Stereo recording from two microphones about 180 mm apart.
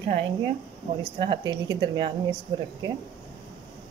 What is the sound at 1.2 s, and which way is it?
A woman's voice, 25° right (ahead or behind).